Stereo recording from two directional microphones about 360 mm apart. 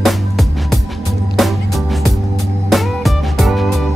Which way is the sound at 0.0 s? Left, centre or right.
Centre.